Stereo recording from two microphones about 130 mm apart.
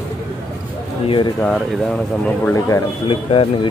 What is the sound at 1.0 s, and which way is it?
Speech, 40° left (ahead or behind).